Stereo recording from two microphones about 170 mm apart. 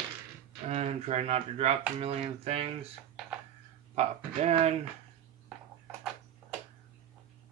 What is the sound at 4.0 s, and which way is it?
Speech, 40° right (ahead or behind).